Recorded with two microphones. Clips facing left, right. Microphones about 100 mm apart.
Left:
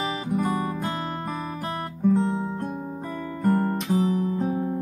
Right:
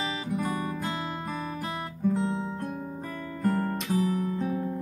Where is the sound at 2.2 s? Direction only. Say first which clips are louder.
Left 4 dB; 40° left (ahead or behind).